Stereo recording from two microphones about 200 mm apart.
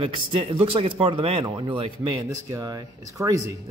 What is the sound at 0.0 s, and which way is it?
Speech, 25° right (ahead or behind).